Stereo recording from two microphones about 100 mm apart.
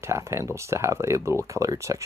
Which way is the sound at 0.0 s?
25° right (ahead or behind).